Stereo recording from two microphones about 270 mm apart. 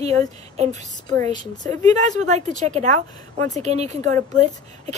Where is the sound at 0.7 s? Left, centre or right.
Centre.